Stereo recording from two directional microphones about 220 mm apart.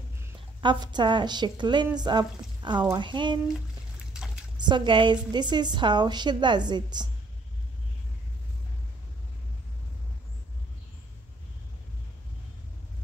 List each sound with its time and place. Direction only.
0.2 s a woman's voice: 20° right (ahead or behind)
4.6 s a woman's voice: 20° right (ahead or behind)